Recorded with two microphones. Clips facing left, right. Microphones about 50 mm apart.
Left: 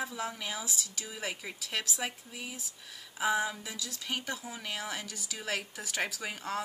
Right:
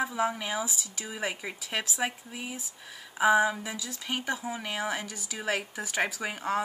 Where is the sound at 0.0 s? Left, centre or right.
Centre.